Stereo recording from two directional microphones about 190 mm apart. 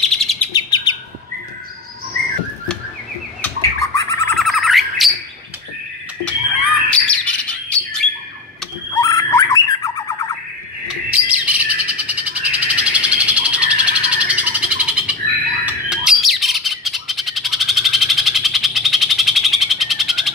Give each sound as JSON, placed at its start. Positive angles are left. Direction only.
{"t": 0.0, "sound": "chirp", "side_deg": 0}
{"t": 0.5, "sound": "bird", "side_deg": 20}
{"t": 3.4, "sound": "bird", "side_deg": 15}
{"t": 4.4, "sound": "bird", "side_deg": 0}
{"t": 6.9, "sound": "bird", "side_deg": 5}
{"t": 8.9, "sound": "bird", "side_deg": 15}
{"t": 11.1, "sound": "bird", "side_deg": -5}